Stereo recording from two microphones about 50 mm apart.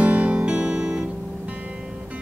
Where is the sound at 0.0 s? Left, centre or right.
Right.